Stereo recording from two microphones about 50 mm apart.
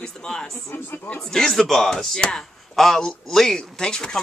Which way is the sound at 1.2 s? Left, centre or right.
Centre.